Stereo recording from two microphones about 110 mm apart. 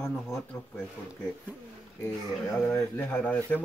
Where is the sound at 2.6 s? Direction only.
20° left (ahead or behind).